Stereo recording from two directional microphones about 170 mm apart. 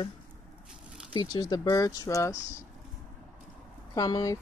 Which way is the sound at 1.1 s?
25° left (ahead or behind).